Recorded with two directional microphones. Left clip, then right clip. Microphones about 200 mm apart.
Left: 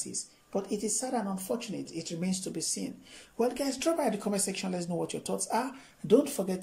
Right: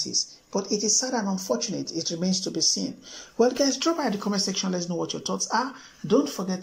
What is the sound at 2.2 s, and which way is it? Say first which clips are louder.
Speech: right 8 dB; 40° left (ahead or behind).